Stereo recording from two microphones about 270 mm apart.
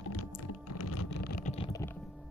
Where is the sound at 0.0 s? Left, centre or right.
Left.